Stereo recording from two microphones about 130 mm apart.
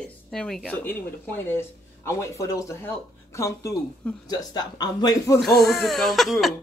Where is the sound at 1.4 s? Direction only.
20° left (ahead or behind).